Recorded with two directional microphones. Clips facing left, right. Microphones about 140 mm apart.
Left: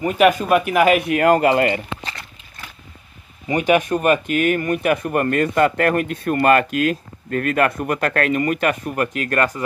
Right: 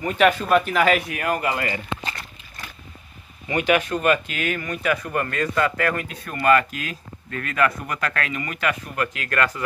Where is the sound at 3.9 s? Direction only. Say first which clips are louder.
Left 4 dB; 50° left (ahead or behind).